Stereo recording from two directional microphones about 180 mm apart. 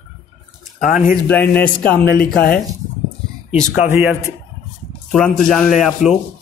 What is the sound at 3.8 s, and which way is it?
Speech, 15° right (ahead or behind).